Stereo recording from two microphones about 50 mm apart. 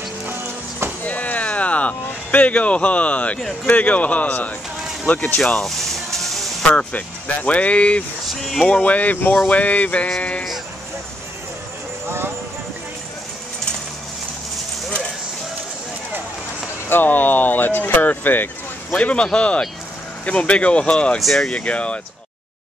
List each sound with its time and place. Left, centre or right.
0.3 s music: right
1.0 s a sound: left
3.6 s speech: left
5.4 s music: centre
6.6 s speech: left
8.3 s speech: centre
8.6 s speech: left
16.9 s speech: left
18.9 s speech: left
21.2 s speech: centre
21.5 s speech: left